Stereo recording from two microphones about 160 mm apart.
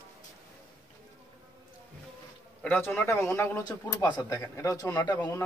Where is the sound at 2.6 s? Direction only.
15° left (ahead or behind).